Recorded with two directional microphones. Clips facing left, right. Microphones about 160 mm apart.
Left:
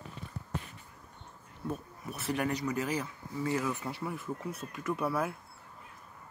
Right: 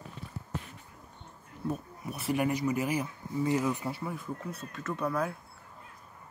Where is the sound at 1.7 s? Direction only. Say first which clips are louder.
Right 3 dB; 10° right (ahead or behind).